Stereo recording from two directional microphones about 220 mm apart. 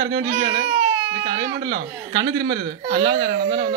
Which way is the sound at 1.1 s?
45° right (ahead or behind).